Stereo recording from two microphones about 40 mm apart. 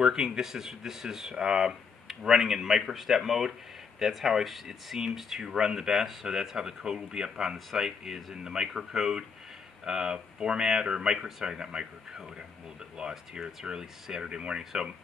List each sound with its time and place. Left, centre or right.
0.0 s speech: centre
11.1 s speech: centre
11.4 s speech: centre